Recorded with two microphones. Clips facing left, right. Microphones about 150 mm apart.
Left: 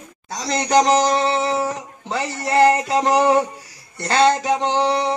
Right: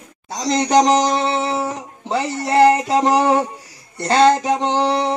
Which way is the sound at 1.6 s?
25° right (ahead or behind).